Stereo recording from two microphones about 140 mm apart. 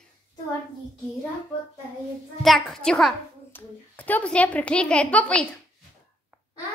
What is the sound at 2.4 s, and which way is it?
A child's voice, centre (ahead or behind).